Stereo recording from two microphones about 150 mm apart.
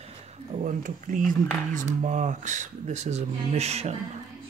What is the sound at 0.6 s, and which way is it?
Speech, 60° right (ahead or behind).